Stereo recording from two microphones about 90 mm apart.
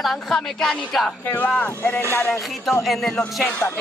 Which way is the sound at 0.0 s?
5° left (ahead or behind).